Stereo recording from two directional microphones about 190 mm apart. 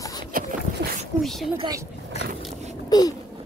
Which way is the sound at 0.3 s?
45° right (ahead or behind).